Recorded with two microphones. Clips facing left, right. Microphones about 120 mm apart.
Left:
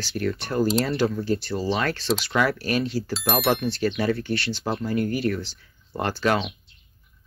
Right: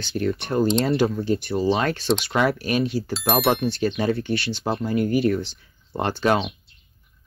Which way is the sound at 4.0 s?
25° right (ahead or behind).